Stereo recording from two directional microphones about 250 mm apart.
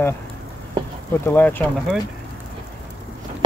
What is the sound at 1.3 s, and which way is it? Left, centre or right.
Speech, centre.